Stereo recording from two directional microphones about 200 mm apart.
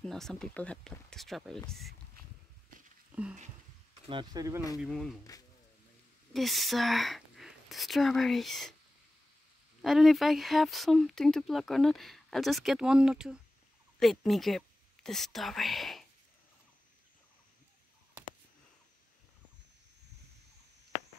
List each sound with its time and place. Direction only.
0.0 s speech: centre (ahead or behind)
4.1 s speech: 20° right (ahead or behind)
4.8 s speech: centre (ahead or behind)
6.3 s speech: centre (ahead or behind)
9.8 s speech: centre (ahead or behind)